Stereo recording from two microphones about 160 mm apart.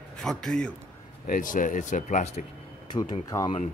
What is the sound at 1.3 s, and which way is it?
Speech, 55° left (ahead or behind).